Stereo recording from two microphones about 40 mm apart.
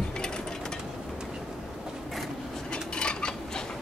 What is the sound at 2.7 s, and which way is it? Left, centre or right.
Dishes, left.